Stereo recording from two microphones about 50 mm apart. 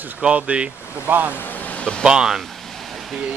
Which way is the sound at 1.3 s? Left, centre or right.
Left.